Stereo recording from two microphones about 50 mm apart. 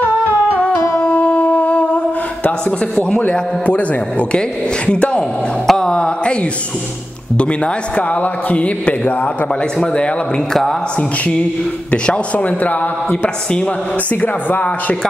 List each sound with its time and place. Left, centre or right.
0.9 s music: left
3.2 s a man's voice: left
5.7 s mantra: centre
7.3 s a man's voice: left
11.9 s a man's voice: left